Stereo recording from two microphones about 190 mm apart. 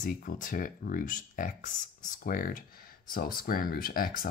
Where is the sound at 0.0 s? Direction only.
45° left (ahead or behind).